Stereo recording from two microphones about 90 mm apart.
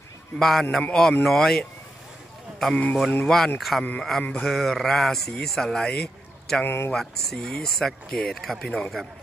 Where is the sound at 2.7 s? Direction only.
15° left (ahead or behind).